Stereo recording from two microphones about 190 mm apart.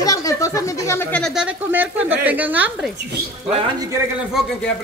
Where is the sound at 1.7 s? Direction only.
10° right (ahead or behind).